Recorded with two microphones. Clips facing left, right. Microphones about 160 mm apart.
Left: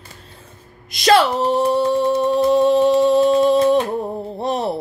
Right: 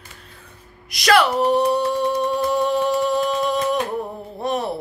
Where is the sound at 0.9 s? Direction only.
25° left (ahead or behind).